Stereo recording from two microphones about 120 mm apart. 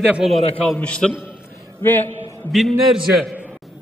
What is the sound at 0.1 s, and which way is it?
Speech, centre (ahead or behind).